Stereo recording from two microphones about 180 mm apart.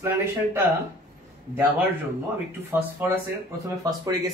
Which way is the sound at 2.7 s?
15° right (ahead or behind).